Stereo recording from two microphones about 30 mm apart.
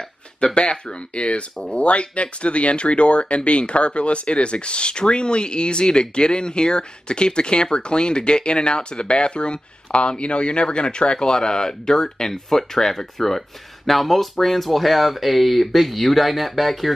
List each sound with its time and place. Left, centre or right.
0.6 s speech: left; by 16.9 s centre